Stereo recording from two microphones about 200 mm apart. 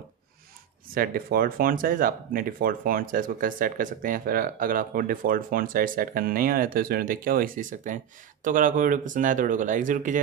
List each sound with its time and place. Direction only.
0.9 s speech: 45° right (ahead or behind)